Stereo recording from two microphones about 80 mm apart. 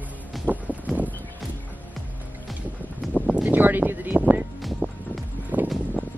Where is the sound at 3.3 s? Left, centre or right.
Right.